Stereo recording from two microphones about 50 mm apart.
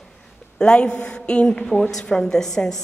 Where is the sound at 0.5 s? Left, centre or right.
Centre.